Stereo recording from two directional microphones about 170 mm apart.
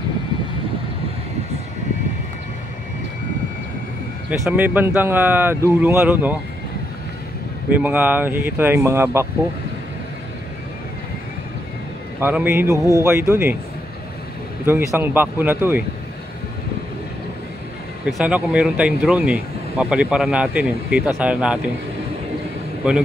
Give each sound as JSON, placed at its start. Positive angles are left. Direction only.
{"t": 4.3, "sound": "speech", "side_deg": -10}
{"t": 7.7, "sound": "speech", "side_deg": -10}
{"t": 12.2, "sound": "speech", "side_deg": -10}
{"t": 14.7, "sound": "speech", "side_deg": -15}
{"t": 18.1, "sound": "speech", "side_deg": -5}